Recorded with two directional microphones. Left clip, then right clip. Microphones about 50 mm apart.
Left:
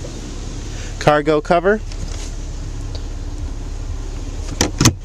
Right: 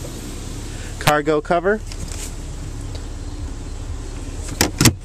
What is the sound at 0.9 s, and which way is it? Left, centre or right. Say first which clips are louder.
Speech: left 3 dB; left.